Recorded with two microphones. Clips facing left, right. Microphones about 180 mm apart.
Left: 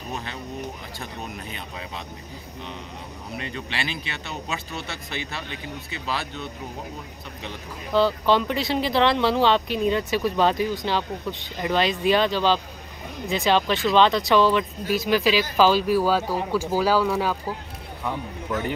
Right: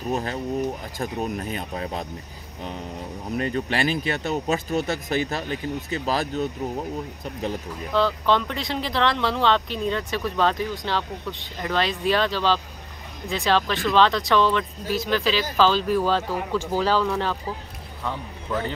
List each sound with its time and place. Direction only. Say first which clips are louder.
0.1 s speech: right 8 dB; 40° right (ahead or behind)
3.3 s speech: right 8 dB; 45° right (ahead or behind)
7.9 s speech: left 2 dB; 5° left (ahead or behind)